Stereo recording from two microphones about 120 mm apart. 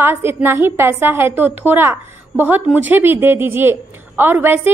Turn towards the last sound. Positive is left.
turn(degrees=-15)  # may be behind; listen again after turning